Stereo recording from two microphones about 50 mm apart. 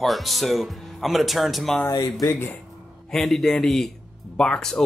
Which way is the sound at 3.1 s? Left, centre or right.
Centre.